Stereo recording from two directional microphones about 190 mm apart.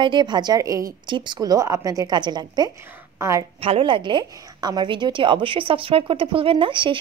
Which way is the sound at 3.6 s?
30° right (ahead or behind).